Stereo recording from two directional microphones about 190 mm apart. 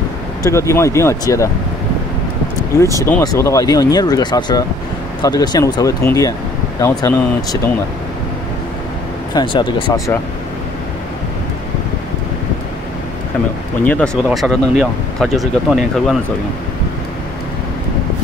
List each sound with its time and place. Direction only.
0.4 s speech: 15° left (ahead or behind)
3.0 s speech: 15° left (ahead or behind)
9.3 s speech: 25° left (ahead or behind)
13.8 s speech: 5° left (ahead or behind)